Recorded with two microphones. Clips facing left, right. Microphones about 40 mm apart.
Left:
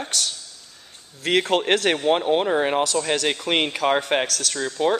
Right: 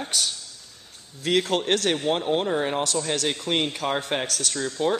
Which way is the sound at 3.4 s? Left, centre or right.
Left.